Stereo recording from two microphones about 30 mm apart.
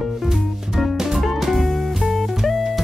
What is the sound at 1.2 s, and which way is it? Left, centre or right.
Music, centre.